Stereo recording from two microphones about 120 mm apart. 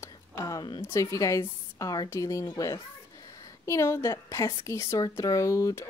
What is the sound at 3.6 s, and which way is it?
Speech, 25° left (ahead or behind).